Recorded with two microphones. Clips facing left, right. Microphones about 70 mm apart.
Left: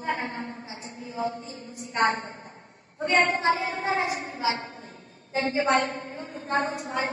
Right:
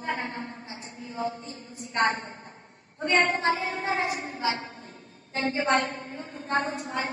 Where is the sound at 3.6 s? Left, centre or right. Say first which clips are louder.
Left 1 dB; left.